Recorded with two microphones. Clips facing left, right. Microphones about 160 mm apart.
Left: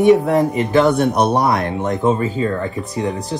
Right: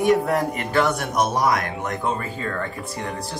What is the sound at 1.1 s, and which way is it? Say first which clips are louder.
Speech: left 6 dB; 65° left (ahead or behind).